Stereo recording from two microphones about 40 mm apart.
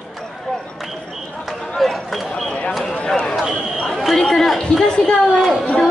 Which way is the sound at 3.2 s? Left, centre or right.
Centre.